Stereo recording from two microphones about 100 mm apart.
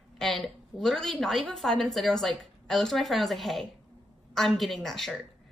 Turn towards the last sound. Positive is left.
turn(degrees=5)  # may be behind; listen again after turning